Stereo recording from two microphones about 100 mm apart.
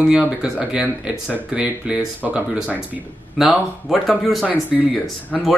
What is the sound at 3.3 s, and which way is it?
A man's voice, 5° right (ahead or behind).